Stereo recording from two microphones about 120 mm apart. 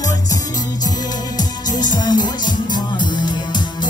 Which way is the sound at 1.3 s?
35° left (ahead or behind).